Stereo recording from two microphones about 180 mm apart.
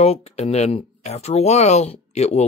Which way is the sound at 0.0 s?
35° left (ahead or behind).